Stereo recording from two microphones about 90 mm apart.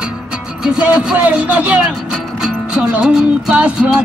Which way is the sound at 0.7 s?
10° right (ahead or behind).